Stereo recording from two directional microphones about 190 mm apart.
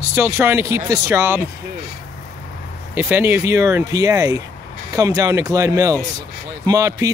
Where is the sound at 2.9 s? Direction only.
10° right (ahead or behind).